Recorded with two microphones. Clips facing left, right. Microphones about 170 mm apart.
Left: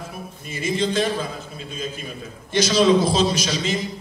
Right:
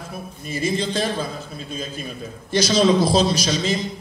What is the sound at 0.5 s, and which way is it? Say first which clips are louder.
Speech: even; 35° right (ahead or behind).